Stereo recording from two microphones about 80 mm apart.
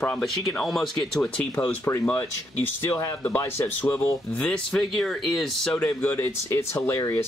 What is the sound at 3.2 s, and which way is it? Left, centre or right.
Speech, left.